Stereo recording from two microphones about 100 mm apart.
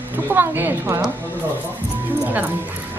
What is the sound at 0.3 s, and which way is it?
Speech, 20° right (ahead or behind).